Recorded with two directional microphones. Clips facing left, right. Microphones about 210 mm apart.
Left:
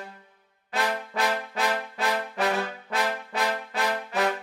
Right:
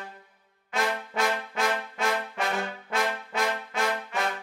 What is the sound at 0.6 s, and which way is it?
Trombone, 35° left (ahead or behind).